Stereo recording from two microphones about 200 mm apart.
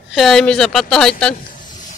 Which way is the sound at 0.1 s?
Centre (ahead or behind).